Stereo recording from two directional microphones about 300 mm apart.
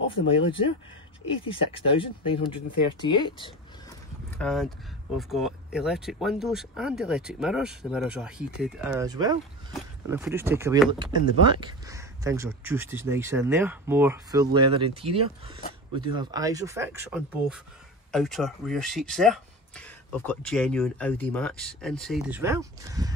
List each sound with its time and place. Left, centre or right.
1.4 s speech: centre
4.3 s speech: centre